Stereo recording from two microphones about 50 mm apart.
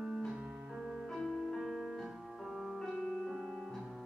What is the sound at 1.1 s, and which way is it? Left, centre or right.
Music, centre.